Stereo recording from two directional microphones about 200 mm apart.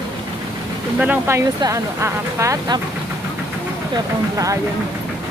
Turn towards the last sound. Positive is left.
turn(degrees=-15)  # may be behind; listen again after turning